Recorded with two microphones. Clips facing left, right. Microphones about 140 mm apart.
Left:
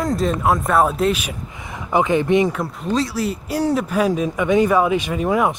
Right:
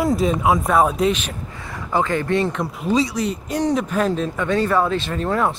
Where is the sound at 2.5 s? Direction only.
Centre (ahead or behind).